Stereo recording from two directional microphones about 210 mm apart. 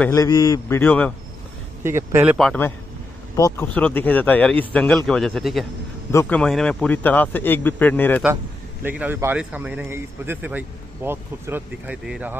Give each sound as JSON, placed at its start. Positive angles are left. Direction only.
{"t": 0.1, "sound": "speech", "side_deg": 15}
{"t": 1.8, "sound": "a man's voice", "side_deg": -10}
{"t": 2.3, "sound": "speech", "side_deg": 5}
{"t": 3.3, "sound": "speech", "side_deg": 15}
{"t": 8.8, "sound": "a man's voice", "side_deg": -10}